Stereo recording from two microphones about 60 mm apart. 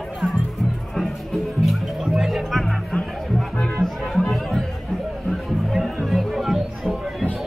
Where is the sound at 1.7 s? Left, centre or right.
Centre.